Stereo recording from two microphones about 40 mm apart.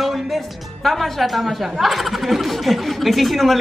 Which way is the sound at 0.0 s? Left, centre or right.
Centre.